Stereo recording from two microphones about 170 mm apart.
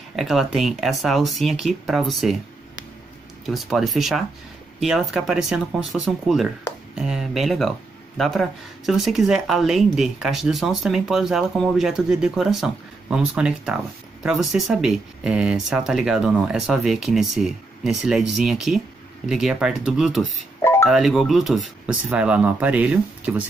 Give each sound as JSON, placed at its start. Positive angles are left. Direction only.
{"t": 0.1, "sound": "speech", "side_deg": 0}
{"t": 3.4, "sound": "speech", "side_deg": 0}